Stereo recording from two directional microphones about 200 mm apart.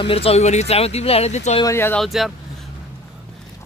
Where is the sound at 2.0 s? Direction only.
Centre (ahead or behind).